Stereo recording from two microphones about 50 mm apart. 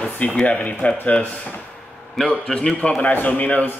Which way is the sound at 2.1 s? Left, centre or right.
Centre.